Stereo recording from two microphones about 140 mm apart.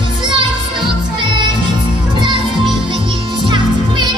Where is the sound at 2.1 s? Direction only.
35° right (ahead or behind).